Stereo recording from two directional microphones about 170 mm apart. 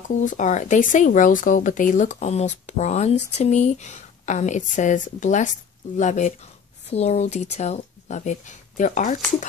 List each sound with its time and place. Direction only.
0.1 s speech: 45° left (ahead or behind)